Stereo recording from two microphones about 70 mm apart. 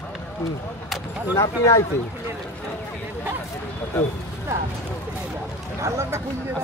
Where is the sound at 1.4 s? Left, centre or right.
Left.